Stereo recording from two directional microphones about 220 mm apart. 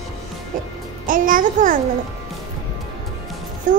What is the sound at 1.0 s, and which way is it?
Speech, 40° right (ahead or behind).